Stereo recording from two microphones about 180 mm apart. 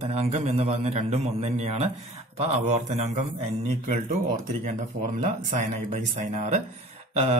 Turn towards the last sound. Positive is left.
turn(degrees=-35)  # may be behind; listen again after turning